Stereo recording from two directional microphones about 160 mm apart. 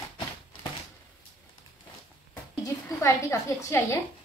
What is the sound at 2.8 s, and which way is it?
A woman's voice, 20° left (ahead or behind).